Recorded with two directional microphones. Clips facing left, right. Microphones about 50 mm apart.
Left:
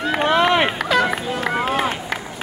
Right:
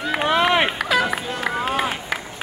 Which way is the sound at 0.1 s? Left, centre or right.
Centre.